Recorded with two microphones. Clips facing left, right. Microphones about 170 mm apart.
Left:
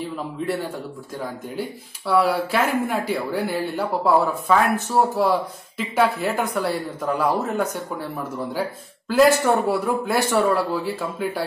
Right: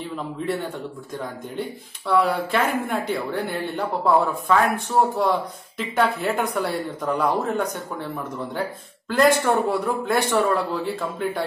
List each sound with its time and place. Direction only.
1.1 s speech: 5° left (ahead or behind)
9.1 s speech: 5° left (ahead or behind)